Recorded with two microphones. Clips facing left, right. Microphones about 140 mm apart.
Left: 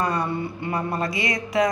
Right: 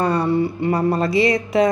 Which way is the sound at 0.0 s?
30° right (ahead or behind).